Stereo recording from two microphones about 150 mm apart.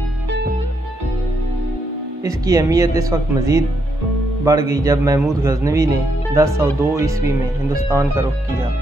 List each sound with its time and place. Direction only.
2.2 s speech: 20° right (ahead or behind)